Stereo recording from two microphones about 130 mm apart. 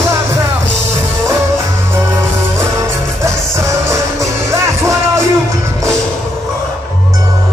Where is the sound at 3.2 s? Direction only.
20° right (ahead or behind).